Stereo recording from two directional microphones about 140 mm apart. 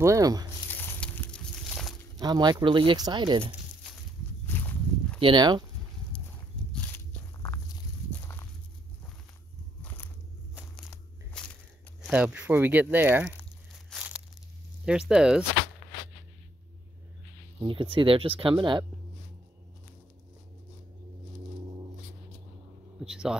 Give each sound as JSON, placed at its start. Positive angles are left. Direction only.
{"t": 0.0, "sound": "speech", "side_deg": -25}
{"t": 0.7, "sound": "a sound", "side_deg": 15}
{"t": 2.1, "sound": "speech", "side_deg": -30}
{"t": 4.6, "sound": "walk", "side_deg": 10}
{"t": 5.2, "sound": "speech", "side_deg": -30}
{"t": 6.7, "sound": "walk", "side_deg": 15}
{"t": 11.4, "sound": "a sound", "side_deg": 5}
{"t": 12.1, "sound": "speech", "side_deg": -10}
{"t": 13.9, "sound": "tearing", "side_deg": -10}
{"t": 14.9, "sound": "speech", "side_deg": -5}
{"t": 17.6, "sound": "speech", "side_deg": -35}
{"t": 22.9, "sound": "a sound", "side_deg": -5}